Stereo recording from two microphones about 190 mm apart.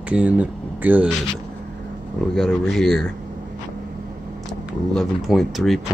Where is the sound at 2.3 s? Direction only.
Centre (ahead or behind).